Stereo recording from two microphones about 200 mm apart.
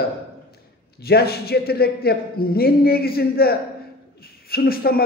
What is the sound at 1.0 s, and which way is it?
A man's voice, 50° left (ahead or behind).